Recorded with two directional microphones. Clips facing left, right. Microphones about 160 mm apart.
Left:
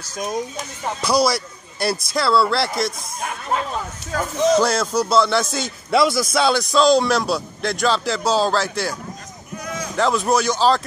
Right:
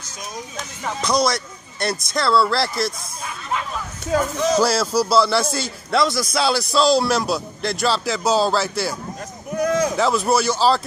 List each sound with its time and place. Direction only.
1.0 s a man's voice: 5° left (ahead or behind)
4.6 s a man's voice: 5° right (ahead or behind)
9.6 s a sound: 65° right (ahead or behind)
9.9 s a man's voice: 5° right (ahead or behind)